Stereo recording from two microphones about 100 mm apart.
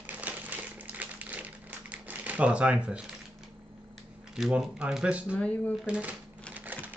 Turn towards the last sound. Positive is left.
turn(degrees=-15)  # may be behind; listen again after turning